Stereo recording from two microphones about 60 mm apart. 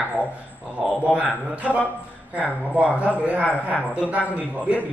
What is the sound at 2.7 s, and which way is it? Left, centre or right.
A man's voice, right.